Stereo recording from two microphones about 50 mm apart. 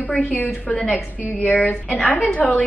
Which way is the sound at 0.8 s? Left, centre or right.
Centre.